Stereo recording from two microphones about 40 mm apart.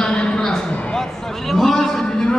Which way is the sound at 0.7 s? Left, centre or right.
Left.